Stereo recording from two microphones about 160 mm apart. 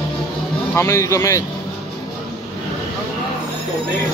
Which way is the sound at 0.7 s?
20° left (ahead or behind).